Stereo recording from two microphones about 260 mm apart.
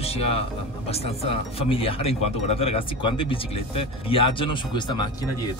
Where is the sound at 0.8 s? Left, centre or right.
Left.